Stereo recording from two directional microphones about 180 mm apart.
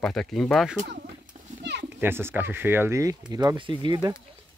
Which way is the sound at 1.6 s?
70° right (ahead or behind).